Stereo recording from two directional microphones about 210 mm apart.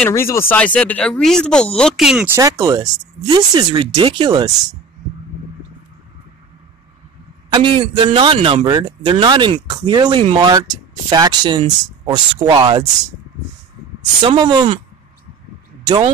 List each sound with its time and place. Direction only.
0.0 s speech: 10° left (ahead or behind); by 4.5 s 20° right (ahead or behind)
7.4 s speech: 20° right (ahead or behind)
14.2 s speech: 20° right (ahead or behind)